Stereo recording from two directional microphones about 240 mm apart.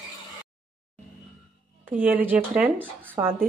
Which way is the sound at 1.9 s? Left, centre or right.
Centre.